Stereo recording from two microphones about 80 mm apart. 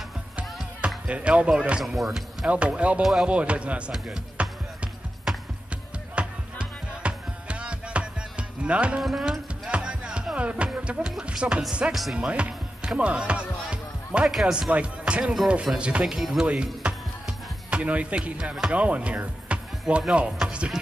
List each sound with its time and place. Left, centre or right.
0.7 s speech: centre
5.3 s a sound: centre
6.1 s music: centre
9.0 s music: centre
9.7 s speech: centre